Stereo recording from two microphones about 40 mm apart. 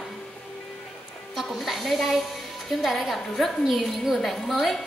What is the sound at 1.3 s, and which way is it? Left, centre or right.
A woman's voice, centre.